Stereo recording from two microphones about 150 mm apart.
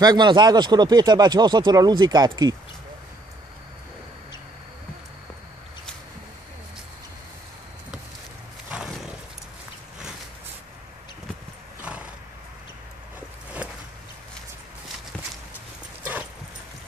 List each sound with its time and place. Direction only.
0.0 s speech: 30° right (ahead or behind)
8.6 s roaring cats: 5° right (ahead or behind)
11.8 s horse: 10° right (ahead or behind)
13.6 s a sound: 10° right (ahead or behind)
16.0 s dog: 10° right (ahead or behind)